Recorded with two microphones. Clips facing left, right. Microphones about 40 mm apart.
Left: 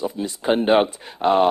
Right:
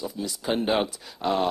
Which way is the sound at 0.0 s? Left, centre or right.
Left.